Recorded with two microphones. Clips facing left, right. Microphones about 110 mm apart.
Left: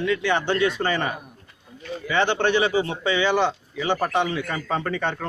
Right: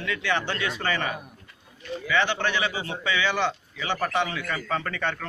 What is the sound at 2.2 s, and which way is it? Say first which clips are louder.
A man's voice: left 9 dB; 25° left (ahead or behind).